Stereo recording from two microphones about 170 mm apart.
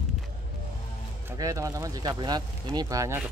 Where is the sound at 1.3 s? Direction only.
20° right (ahead or behind).